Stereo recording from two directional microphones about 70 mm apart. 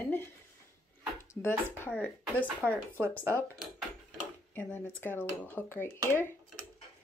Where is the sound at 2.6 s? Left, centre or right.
Right.